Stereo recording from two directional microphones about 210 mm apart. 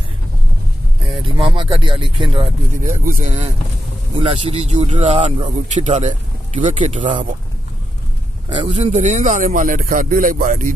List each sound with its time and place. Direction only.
1.2 s speech: 25° right (ahead or behind)
2.7 s a man's voice: 40° right (ahead or behind)
8.5 s a man's voice: 25° right (ahead or behind)